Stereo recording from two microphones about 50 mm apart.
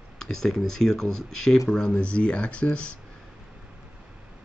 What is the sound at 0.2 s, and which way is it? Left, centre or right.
Speech, centre.